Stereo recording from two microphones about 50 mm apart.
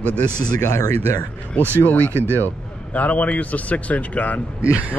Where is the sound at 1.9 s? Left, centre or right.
Left.